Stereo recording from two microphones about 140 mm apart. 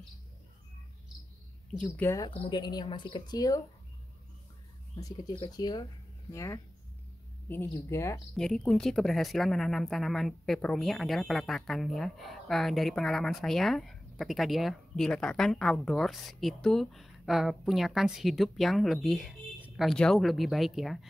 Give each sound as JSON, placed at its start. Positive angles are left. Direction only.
{"t": 2.0, "sound": "speech", "side_deg": 15}
{"t": 2.5, "sound": "speech", "side_deg": 30}
{"t": 4.9, "sound": "speech", "side_deg": 30}
{"t": 8.4, "sound": "a woman's voice", "side_deg": 5}